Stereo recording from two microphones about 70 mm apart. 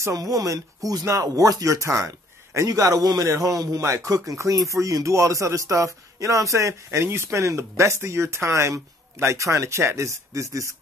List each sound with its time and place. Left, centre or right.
0.0 s a man's voice: right